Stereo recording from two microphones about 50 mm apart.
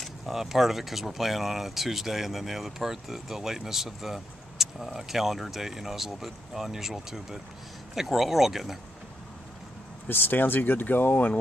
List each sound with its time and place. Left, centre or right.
0.0 s speech: centre
10.0 s speech: left